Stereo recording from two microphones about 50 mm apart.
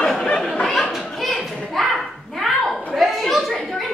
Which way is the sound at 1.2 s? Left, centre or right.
Centre.